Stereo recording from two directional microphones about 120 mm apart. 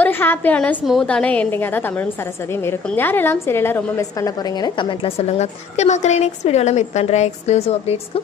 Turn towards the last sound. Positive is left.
turn(degrees=60)  # may be behind; listen again after turning